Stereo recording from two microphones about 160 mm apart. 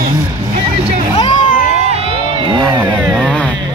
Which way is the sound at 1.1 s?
35° left (ahead or behind).